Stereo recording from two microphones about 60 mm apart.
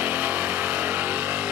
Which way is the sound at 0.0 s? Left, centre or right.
Right.